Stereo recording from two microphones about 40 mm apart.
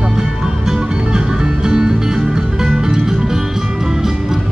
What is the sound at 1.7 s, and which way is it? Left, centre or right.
Music, centre.